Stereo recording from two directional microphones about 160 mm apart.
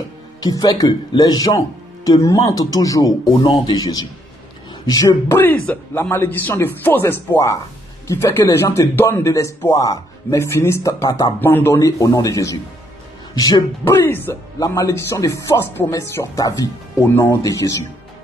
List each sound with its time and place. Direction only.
0.4 s a man's voice: 25° left (ahead or behind)
13.9 s speech: 15° left (ahead or behind)